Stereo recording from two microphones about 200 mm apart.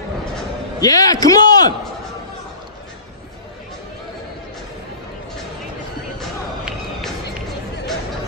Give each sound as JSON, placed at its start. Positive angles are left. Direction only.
{"t": 0.7, "sound": "a man's voice", "side_deg": 20}
{"t": 6.1, "sound": "music", "side_deg": 0}